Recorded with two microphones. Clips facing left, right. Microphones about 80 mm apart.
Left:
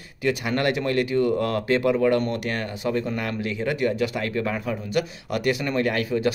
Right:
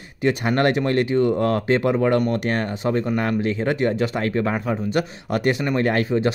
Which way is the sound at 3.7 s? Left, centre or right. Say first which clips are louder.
Even; right.